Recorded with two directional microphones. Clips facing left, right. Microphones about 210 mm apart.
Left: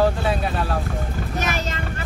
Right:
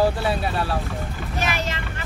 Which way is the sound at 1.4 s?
45° left (ahead or behind).